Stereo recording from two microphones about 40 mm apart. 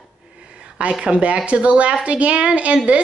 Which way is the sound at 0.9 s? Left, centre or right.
Right.